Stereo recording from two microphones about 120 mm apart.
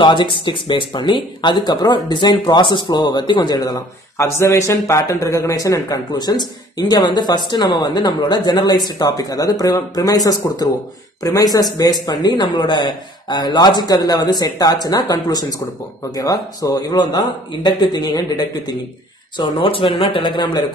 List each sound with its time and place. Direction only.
0.0 s speech: 40° left (ahead or behind)